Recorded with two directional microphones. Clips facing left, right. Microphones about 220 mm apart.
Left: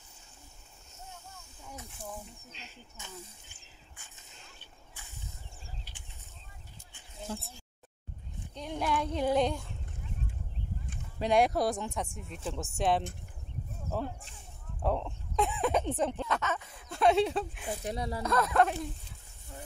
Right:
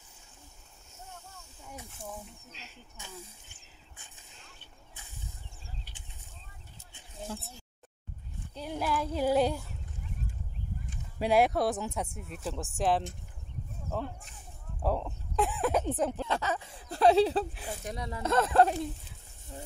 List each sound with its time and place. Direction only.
1.9 s speech: centre (ahead or behind)
8.5 s speech: 5° right (ahead or behind)
11.1 s speech: 5° right (ahead or behind)
16.3 s a sound: 30° right (ahead or behind)
17.8 s speech: 35° left (ahead or behind)
18.2 s speech: 25° right (ahead or behind)